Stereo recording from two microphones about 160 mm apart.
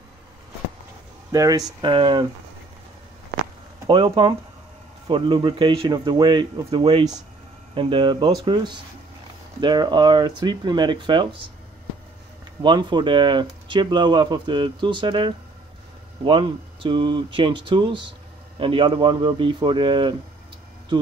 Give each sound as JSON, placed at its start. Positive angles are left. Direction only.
{"t": 1.3, "sound": "speech", "side_deg": -20}
{"t": 3.8, "sound": "speech", "side_deg": -30}
{"t": 12.6, "sound": "speech", "side_deg": -30}